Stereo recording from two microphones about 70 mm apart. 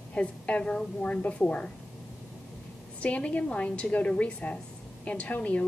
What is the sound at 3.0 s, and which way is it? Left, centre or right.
A woman's voice, centre.